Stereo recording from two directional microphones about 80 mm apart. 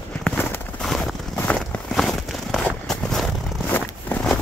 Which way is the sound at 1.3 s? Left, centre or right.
Left.